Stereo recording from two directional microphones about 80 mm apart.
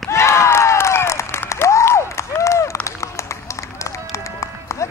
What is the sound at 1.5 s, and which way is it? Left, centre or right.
Applause, left.